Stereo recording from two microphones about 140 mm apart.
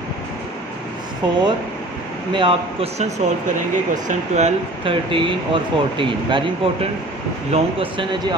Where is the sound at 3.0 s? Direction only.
60° right (ahead or behind).